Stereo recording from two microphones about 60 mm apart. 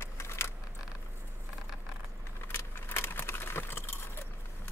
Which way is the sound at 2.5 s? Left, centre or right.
Left.